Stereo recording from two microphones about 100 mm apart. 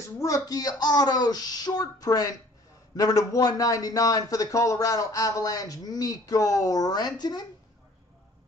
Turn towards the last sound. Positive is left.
turn(degrees=45)  # may be behind; listen again after turning